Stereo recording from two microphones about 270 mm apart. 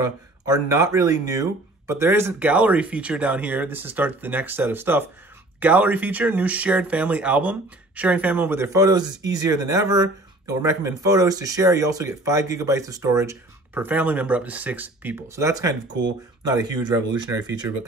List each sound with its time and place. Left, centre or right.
0.0 s speech: centre
15.9 s speech: right
16.4 s speech: centre